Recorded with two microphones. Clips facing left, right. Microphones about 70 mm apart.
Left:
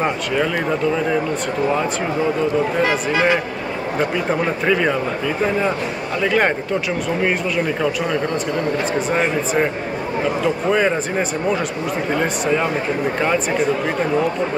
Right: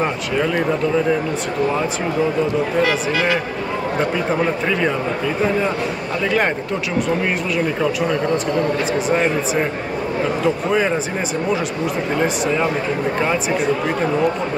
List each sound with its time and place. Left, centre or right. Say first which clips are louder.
2.8 s a man's voice: even; left
9.1 s speech: right 1 dB; centre
10.7 s speech: left 1 dB; centre